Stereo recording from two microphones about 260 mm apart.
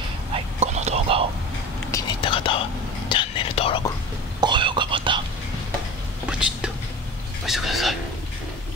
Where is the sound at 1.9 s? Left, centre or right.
Centre.